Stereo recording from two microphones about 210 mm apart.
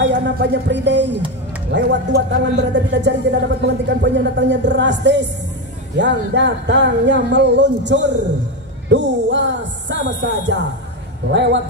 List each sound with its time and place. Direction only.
0.0 s speech: 55° right (ahead or behind)